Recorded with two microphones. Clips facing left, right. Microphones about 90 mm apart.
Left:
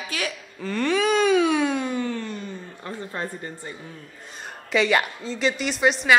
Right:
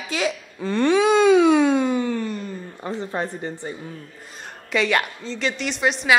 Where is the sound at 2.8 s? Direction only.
20° right (ahead or behind).